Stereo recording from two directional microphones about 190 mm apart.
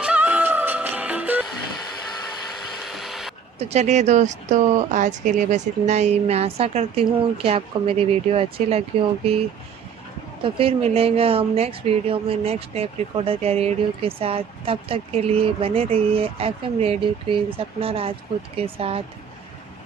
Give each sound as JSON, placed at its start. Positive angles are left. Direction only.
{"t": 0.0, "sound": "music", "side_deg": -5}
{"t": 2.8, "sound": "a sound", "side_deg": 0}
{"t": 3.5, "sound": "a woman's voice", "side_deg": -35}
{"t": 10.4, "sound": "a woman's voice", "side_deg": -30}